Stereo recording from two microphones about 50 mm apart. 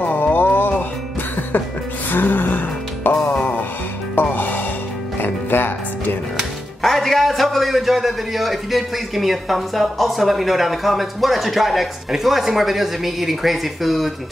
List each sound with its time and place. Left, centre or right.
0.0 s music: left
2.0 s music: left
6.8 s a man's voice: centre